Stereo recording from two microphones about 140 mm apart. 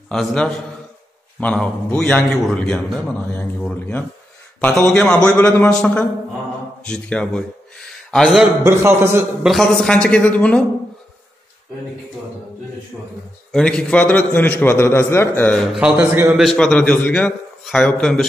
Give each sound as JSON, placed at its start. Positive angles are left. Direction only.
{"t": 0.1, "sound": "a man's voice", "side_deg": 5}
{"t": 8.6, "sound": "a man's voice", "side_deg": -15}
{"t": 9.4, "sound": "a man's voice", "side_deg": 0}
{"t": 12.9, "sound": "a man's voice", "side_deg": 0}
{"t": 15.8, "sound": "a man's voice", "side_deg": -10}
{"t": 16.3, "sound": "a man's voice", "side_deg": 5}